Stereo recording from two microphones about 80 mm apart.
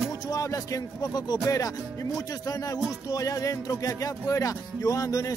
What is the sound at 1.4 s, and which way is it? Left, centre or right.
Music, left.